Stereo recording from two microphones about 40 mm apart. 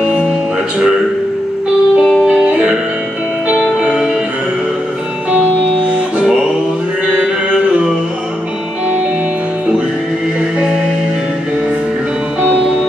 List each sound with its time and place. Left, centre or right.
2.0 s music: centre
2.2 s music: right